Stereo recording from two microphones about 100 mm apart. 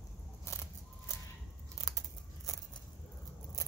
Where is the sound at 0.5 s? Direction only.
30° left (ahead or behind).